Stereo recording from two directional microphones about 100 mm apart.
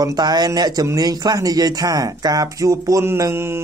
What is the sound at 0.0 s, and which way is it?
Speech, 40° right (ahead or behind).